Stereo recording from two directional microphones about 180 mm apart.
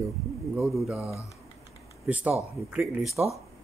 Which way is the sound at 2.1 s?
10° right (ahead or behind).